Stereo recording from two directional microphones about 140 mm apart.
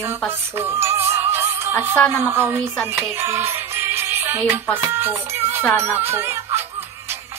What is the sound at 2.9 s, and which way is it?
Music, 15° right (ahead or behind).